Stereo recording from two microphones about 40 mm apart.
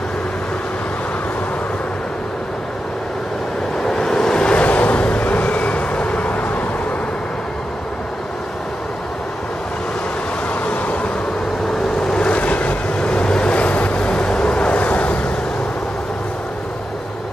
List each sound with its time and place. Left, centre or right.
3.8 s vehicle: centre
4.6 s vehicle: left
10.6 s vehicle: left
12.0 s waves: left
12.4 s vehicle: left